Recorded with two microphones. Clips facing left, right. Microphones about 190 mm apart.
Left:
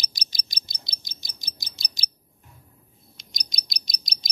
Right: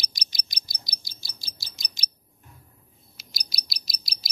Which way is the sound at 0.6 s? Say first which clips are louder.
Left 1 dB; 25° left (ahead or behind).